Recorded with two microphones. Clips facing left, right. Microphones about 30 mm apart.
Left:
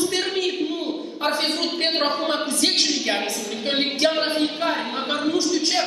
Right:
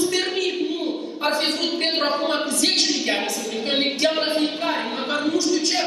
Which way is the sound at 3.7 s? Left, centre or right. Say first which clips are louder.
Right 1 dB; centre.